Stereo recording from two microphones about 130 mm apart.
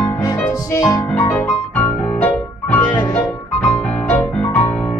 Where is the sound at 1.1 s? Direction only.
15° left (ahead or behind).